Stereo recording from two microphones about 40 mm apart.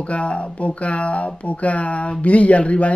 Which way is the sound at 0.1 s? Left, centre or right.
Left.